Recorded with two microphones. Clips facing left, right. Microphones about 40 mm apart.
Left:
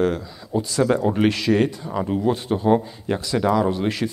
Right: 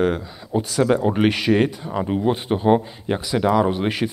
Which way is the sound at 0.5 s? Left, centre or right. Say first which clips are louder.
Right 1 dB; right.